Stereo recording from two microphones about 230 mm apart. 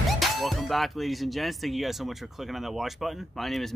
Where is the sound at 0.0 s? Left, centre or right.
Centre.